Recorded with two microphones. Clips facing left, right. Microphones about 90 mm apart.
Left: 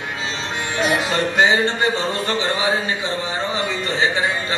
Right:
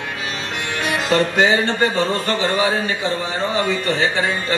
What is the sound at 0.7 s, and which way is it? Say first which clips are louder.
Music: right 1 dB; 20° left (ahead or behind).